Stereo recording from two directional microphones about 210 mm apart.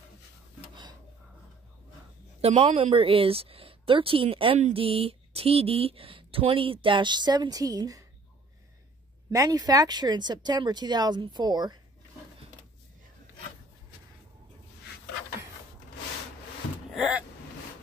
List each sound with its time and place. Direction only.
2.4 s a woman's voice: 30° right (ahead or behind)
9.3 s a woman's voice: 15° right (ahead or behind)
16.9 s vehicle: 5° right (ahead or behind)